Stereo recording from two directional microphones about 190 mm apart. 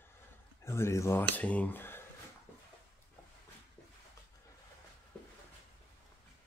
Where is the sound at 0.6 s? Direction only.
15° left (ahead or behind).